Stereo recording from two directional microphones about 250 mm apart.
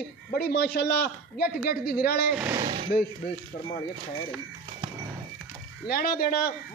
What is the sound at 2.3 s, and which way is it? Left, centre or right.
Speech, centre.